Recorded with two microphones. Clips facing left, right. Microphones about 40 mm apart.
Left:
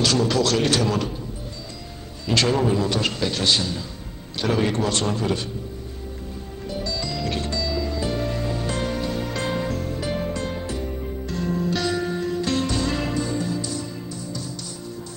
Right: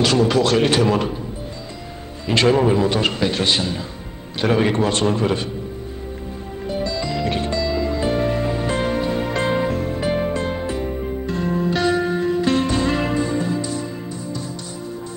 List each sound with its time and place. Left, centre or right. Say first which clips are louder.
0.0 s a man's voice: right 4 dB; right
2.2 s a man's voice: right 5 dB; right
6.7 s music: right 5 dB; right